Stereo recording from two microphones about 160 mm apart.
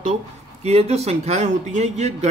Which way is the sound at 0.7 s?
40° right (ahead or behind).